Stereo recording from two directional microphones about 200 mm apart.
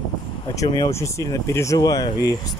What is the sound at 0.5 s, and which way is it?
Speech, 20° left (ahead or behind).